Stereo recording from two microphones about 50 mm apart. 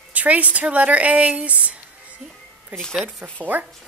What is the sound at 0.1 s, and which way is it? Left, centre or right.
Speech, right.